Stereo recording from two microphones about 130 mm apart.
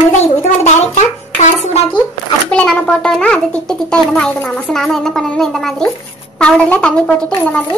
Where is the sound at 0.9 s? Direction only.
65° left (ahead or behind).